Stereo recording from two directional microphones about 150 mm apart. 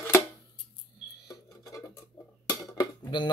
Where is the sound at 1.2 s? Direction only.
25° left (ahead or behind).